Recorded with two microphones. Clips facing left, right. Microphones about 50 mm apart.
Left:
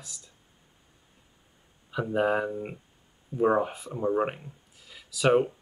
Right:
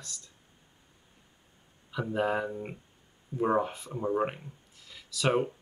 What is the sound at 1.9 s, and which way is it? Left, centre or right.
Speech, centre.